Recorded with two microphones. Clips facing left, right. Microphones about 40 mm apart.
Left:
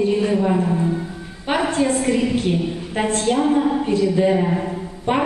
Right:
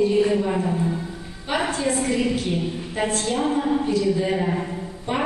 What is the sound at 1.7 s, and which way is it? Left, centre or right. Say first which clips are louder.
Speech: left 5 dB; left.